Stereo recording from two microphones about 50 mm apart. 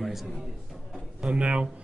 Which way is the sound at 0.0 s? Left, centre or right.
Centre.